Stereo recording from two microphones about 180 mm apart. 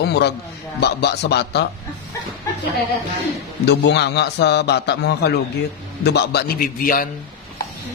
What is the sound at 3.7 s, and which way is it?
A man's voice, 70° left (ahead or behind).